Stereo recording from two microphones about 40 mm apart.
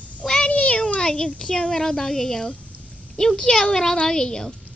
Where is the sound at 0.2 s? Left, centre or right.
Left.